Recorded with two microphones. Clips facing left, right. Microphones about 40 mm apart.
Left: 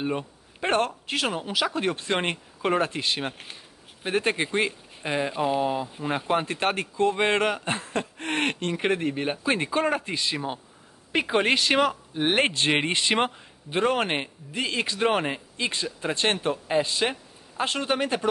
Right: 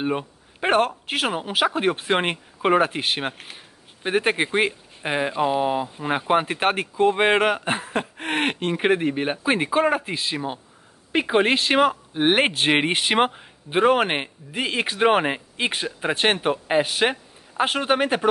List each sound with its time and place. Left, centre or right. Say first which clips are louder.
0.0 s speech: right 3 dB; right
7.9 s a sound: right 3 dB; right
8.3 s speech: right 3 dB; right